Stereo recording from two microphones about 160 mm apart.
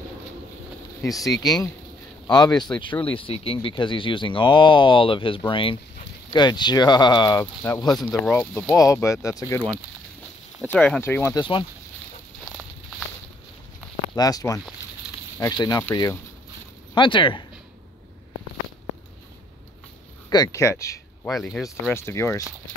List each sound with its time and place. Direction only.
1.0 s speech: 20° left (ahead or behind)
10.7 s speech: 10° left (ahead or behind)
11.3 s speech: 30° left (ahead or behind)
14.1 s speech: 25° left (ahead or behind)
16.9 s speech: 30° left (ahead or behind)
20.2 s speech: 20° left (ahead or behind)
21.3 s speech: centre (ahead or behind)
21.8 s speech: 15° left (ahead or behind)